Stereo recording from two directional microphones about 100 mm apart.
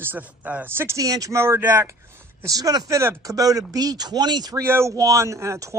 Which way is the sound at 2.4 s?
35° right (ahead or behind).